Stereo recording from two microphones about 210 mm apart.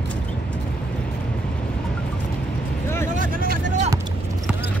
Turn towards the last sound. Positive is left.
turn(degrees=-40)  # may be behind; listen again after turning